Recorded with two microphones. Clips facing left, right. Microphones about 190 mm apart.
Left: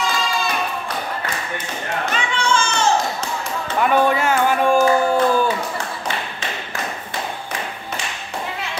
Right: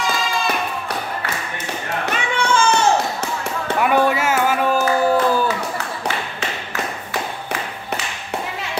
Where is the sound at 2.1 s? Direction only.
55° right (ahead or behind).